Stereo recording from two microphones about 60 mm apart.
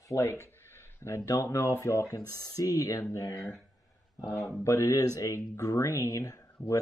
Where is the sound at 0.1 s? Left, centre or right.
Left.